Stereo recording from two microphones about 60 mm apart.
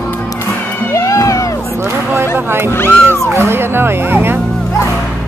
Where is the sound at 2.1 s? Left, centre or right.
Right.